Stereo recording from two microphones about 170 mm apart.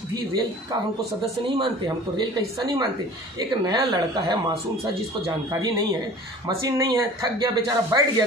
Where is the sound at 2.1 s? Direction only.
25° right (ahead or behind).